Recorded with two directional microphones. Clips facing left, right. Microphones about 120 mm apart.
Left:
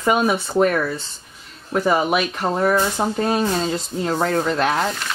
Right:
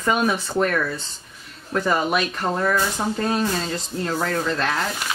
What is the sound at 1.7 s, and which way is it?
Speech, 15° left (ahead or behind).